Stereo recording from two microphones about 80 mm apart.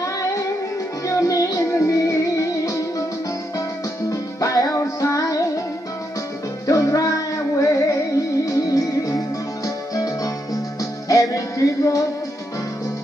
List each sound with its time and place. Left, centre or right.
0.0 s music: left
4.1 s music: left
6.7 s music: left